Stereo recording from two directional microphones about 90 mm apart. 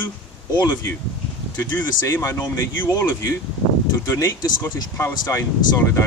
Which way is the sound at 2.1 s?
30° left (ahead or behind).